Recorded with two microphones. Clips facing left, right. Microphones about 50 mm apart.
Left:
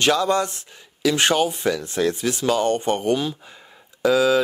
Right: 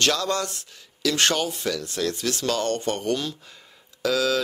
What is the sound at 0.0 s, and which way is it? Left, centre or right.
Speech, centre.